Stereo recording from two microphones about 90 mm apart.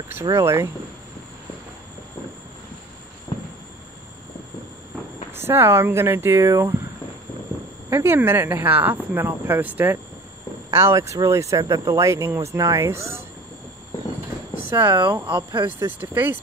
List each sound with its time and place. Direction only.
0.1 s speech: 35° right (ahead or behind)
3.3 s cricket: 50° left (ahead or behind)
5.4 s speech: 25° right (ahead or behind)
7.9 s speech: 25° right (ahead or behind)
10.8 s speech: 35° right (ahead or behind)
14.7 s speech: 25° right (ahead or behind)
15.2 s speech: 60° right (ahead or behind)
15.6 s speech: 25° right (ahead or behind)